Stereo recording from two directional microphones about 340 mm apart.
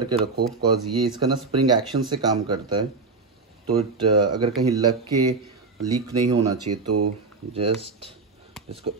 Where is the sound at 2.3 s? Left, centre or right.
Centre.